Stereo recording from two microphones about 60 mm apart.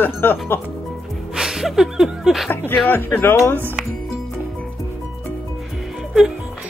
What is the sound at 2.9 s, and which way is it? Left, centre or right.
Speech, left.